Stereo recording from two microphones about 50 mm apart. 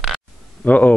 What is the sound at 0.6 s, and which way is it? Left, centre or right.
Speech, left.